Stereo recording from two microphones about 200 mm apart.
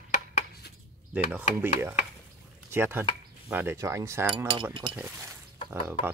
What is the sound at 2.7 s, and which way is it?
Speech, 10° right (ahead or behind).